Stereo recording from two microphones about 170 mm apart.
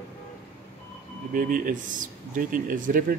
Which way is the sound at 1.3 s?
55° right (ahead or behind).